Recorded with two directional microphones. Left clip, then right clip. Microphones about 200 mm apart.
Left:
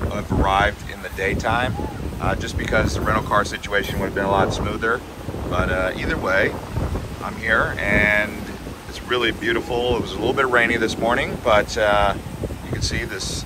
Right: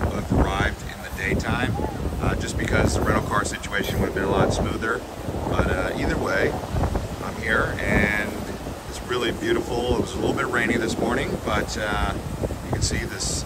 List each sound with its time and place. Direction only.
0.1 s boat: centre (ahead or behind)
1.2 s speech: centre (ahead or behind)